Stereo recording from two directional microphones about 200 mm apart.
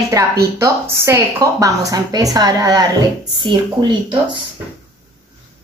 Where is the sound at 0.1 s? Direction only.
15° right (ahead or behind).